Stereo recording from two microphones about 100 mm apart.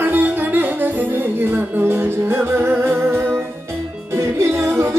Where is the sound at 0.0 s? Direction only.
20° right (ahead or behind).